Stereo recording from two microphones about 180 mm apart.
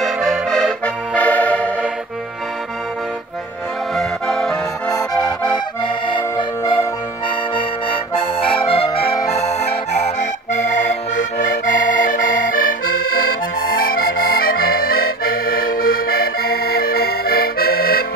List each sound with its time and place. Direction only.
0.0 s accordion: centre (ahead or behind)
3.9 s music: centre (ahead or behind)
4.9 s accordion: 20° left (ahead or behind)
10.1 s accordion: 45° left (ahead or behind)